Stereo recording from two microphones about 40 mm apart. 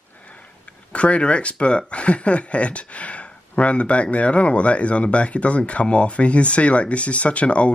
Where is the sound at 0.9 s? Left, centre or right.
Left.